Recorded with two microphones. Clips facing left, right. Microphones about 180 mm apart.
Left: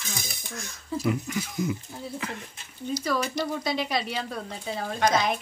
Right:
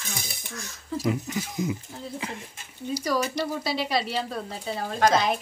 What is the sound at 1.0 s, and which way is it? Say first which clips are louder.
Speech: even; 25° right (ahead or behind).